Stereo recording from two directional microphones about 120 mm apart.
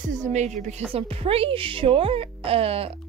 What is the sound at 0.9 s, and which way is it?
Speech, 55° right (ahead or behind).